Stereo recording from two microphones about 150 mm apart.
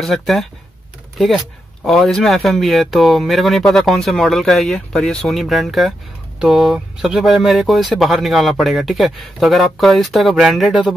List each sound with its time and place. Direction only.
0.0 s speech: centre (ahead or behind)